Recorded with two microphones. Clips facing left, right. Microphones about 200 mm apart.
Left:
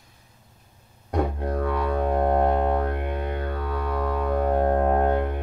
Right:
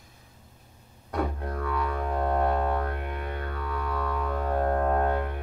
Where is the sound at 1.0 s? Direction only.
30° left (ahead or behind).